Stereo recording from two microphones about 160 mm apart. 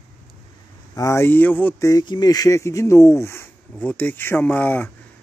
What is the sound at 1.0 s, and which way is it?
Speech, 15° left (ahead or behind).